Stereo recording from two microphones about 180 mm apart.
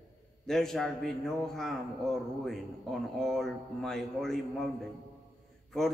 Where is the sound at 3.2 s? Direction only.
Centre (ahead or behind).